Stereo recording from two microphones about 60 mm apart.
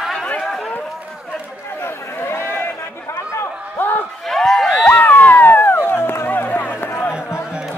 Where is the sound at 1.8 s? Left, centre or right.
Left.